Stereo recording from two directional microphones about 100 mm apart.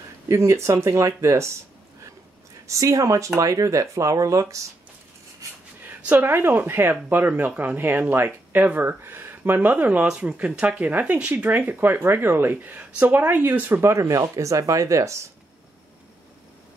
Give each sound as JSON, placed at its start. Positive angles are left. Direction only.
{"t": 0.3, "sound": "speech", "side_deg": -30}
{"t": 2.6, "sound": "speech", "side_deg": -30}
{"t": 5.8, "sound": "a sound", "side_deg": -15}
{"t": 6.1, "sound": "speech", "side_deg": -20}